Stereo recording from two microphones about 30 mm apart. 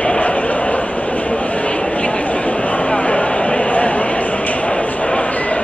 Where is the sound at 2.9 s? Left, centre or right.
Left.